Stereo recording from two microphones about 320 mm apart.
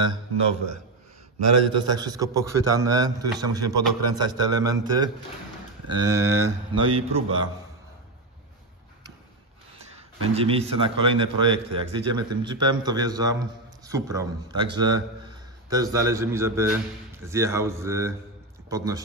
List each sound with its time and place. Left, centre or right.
1.7 s a man's voice: centre
10.2 s a man's voice: centre